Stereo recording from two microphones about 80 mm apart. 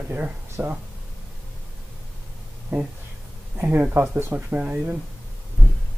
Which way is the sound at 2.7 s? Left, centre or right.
Right.